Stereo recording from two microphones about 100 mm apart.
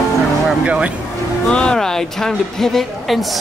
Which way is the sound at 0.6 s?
10° right (ahead or behind).